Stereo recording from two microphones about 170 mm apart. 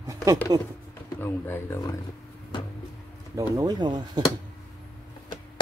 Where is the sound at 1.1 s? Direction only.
10° left (ahead or behind).